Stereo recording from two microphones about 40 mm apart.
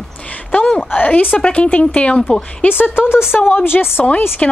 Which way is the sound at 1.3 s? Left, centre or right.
Left.